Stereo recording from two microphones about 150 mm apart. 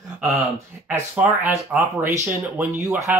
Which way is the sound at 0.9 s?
10° right (ahead or behind).